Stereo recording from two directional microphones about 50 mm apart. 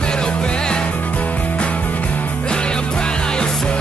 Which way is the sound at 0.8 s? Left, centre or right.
Left.